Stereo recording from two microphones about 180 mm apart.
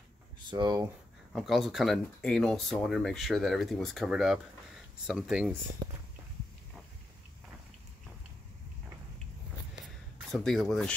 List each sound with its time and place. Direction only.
0.5 s speech: 25° right (ahead or behind)
1.3 s speech: centre (ahead or behind)
10.3 s speech: centre (ahead or behind)